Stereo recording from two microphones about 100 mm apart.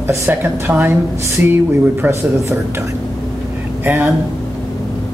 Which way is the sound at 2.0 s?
20° right (ahead or behind).